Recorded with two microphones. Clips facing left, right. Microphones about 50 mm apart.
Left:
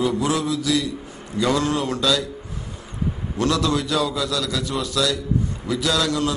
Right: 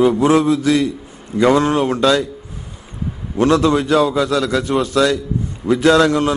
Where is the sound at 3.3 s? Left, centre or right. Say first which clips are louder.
Right 8 dB; right.